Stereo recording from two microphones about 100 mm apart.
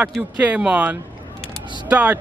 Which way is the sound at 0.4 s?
10° right (ahead or behind).